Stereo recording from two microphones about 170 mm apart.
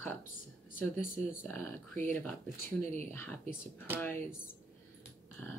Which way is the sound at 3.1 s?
15° left (ahead or behind).